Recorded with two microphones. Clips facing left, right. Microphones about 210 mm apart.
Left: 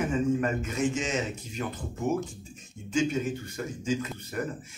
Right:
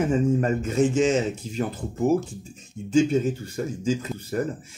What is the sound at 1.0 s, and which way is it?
Speech, 30° right (ahead or behind).